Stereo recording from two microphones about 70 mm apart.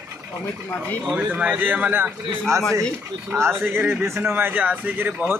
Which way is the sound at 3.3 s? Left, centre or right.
Right.